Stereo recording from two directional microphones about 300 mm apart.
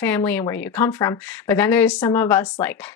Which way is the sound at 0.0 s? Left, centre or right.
Centre.